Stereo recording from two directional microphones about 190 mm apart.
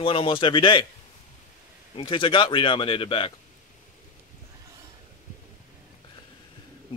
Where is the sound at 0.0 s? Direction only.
30° left (ahead or behind).